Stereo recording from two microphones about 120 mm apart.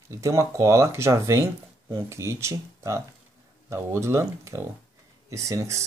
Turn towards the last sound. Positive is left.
turn(degrees=-25)  # may be behind; listen again after turning